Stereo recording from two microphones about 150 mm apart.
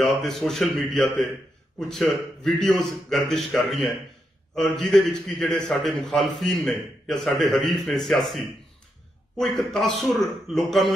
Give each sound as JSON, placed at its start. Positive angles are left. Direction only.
{"t": 0.2, "sound": "a man's voice", "side_deg": 0}